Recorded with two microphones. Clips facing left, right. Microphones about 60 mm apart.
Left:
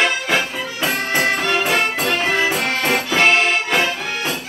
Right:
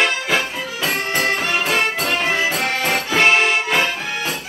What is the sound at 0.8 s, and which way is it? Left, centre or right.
Music, left.